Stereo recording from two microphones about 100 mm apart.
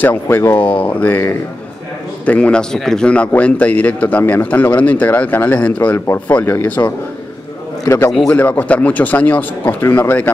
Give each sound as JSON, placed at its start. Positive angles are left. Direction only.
{"t": 0.0, "sound": "speech", "side_deg": 20}
{"t": 8.3, "sound": "speech", "side_deg": 15}